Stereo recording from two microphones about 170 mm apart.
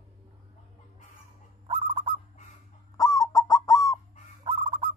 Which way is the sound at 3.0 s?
20° left (ahead or behind).